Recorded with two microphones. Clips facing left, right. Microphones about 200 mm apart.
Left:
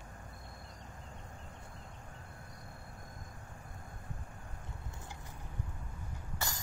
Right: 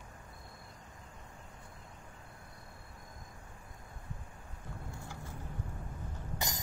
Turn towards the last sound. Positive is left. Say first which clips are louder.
# right 2 dB
turn(degrees=-15)  # may be behind; listen again after turning